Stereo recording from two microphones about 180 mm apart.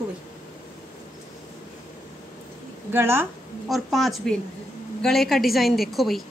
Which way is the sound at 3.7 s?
Centre (ahead or behind).